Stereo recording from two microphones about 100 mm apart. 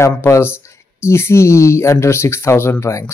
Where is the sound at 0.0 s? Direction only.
25° left (ahead or behind).